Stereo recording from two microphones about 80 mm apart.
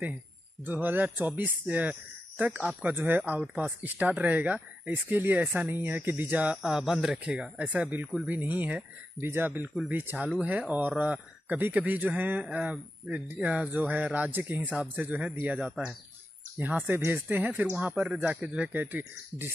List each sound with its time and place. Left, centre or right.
0.7 s speech: right
10.1 s speech: centre
18.7 s speech: right